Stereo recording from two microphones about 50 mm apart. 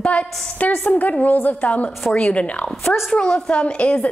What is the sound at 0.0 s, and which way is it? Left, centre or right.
A woman's voice, left.